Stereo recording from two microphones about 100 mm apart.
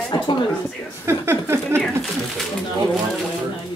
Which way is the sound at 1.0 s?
25° right (ahead or behind).